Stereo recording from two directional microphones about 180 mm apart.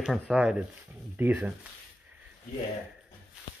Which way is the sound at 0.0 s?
5° right (ahead or behind).